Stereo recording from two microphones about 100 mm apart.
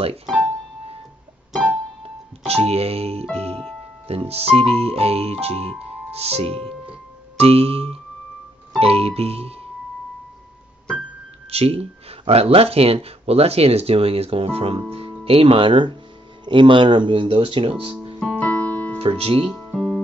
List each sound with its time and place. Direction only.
2.0 s speech: 90° right
11.5 s speech: 85° right
14.9 s music: 70° right (ahead or behind)
15.2 s speech: 70° right (ahead or behind)
18.2 s keyboard: 10° left (ahead or behind)
18.9 s speech: 75° right (ahead or behind)
19.7 s music: centre (ahead or behind)